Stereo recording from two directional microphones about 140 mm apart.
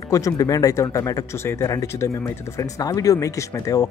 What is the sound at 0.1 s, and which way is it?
Speech, 25° left (ahead or behind).